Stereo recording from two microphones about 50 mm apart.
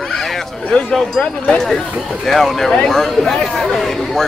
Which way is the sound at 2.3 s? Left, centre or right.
Centre.